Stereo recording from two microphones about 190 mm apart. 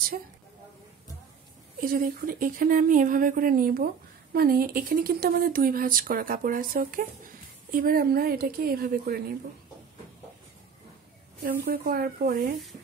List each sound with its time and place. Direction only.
1.8 s speech: 45° right (ahead or behind)
11.4 s speech: 50° right (ahead or behind)